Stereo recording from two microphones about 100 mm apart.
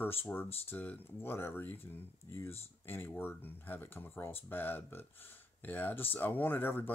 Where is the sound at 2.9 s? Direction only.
20° left (ahead or behind).